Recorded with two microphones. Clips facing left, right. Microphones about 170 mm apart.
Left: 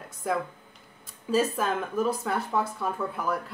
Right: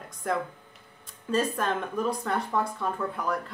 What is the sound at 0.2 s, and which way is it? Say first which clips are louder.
A woman's voice: left 1 dB; 5° left (ahead or behind).